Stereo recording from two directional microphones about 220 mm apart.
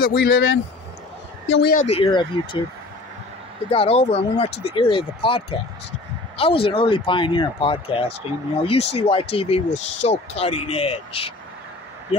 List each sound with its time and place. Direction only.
0.2 s speech: 50° left (ahead or behind)
1.9 s speech: 25° left (ahead or behind)
3.7 s speech: 25° left (ahead or behind)